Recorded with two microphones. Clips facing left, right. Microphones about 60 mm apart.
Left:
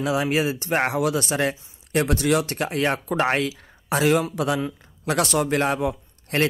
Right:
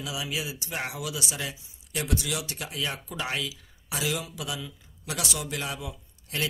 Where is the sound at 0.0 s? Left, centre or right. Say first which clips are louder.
Left 11 dB; left.